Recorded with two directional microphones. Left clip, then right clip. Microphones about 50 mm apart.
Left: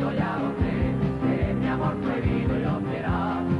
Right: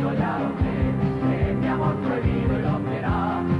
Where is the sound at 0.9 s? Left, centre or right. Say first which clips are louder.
Right 2 dB; right.